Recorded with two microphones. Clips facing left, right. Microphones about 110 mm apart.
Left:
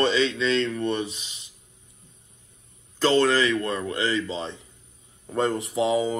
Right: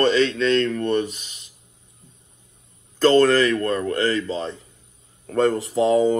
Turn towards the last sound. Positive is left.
turn(degrees=5)  # may be behind; listen again after turning